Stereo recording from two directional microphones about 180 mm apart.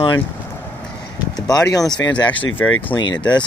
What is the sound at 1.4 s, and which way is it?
Speech, 20° left (ahead or behind).